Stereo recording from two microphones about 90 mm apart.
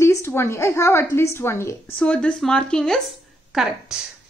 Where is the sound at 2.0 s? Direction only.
10° left (ahead or behind).